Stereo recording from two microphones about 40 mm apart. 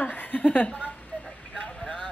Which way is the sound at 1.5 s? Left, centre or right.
Left.